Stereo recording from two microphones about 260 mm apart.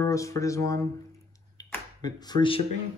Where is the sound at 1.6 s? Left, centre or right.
Centre.